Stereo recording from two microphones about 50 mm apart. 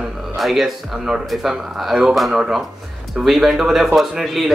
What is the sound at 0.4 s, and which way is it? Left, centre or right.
A man's voice, centre.